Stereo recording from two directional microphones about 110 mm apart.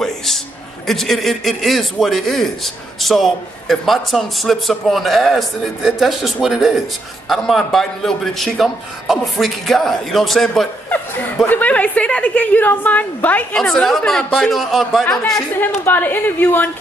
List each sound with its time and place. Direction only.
0.8 s a man's voice: centre (ahead or behind)
11.4 s a woman's voice: 15° left (ahead or behind)
15.6 s a woman's voice: 15° left (ahead or behind)